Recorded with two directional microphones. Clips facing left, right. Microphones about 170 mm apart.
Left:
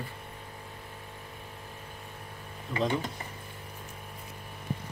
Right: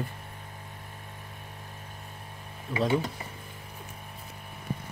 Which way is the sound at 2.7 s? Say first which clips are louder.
Right 1 dB; 5° right (ahead or behind).